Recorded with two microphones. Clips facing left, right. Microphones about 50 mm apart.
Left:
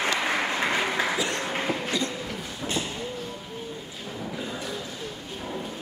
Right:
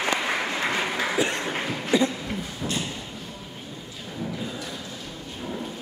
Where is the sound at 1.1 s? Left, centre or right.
Right.